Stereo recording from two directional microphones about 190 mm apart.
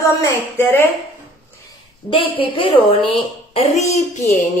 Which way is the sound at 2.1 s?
25° left (ahead or behind).